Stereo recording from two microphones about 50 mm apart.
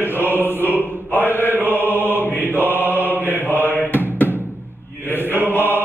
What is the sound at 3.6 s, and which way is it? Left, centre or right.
Music, left.